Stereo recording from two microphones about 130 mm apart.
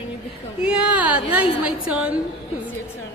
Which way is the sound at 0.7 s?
10° right (ahead or behind).